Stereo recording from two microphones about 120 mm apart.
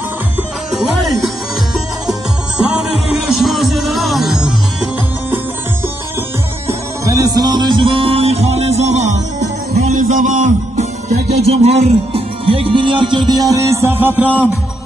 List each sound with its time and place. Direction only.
0.7 s music: centre (ahead or behind)
3.3 s music: centre (ahead or behind)
7.1 s music: 30° right (ahead or behind)
13.3 s music: 30° right (ahead or behind)